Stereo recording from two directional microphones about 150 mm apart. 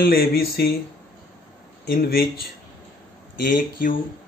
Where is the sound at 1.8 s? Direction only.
90° left.